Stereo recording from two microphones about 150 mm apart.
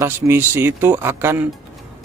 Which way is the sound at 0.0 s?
15° right (ahead or behind).